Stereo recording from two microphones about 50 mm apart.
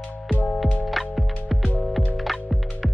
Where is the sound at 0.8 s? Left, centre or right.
Centre.